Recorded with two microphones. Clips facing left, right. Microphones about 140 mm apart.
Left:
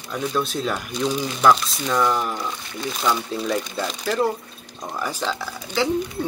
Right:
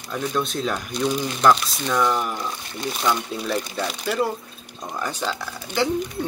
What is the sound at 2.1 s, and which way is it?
Speech, 5° right (ahead or behind).